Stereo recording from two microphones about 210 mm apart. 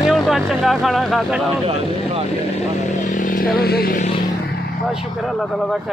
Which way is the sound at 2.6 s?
35° left (ahead or behind).